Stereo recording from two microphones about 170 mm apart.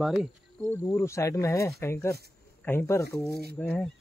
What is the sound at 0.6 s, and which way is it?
Speech, 10° left (ahead or behind).